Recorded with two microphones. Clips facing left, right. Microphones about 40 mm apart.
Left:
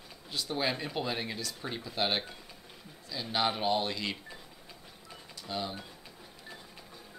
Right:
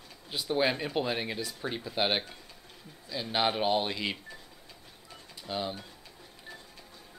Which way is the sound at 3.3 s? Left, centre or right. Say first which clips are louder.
Right 2 dB; centre.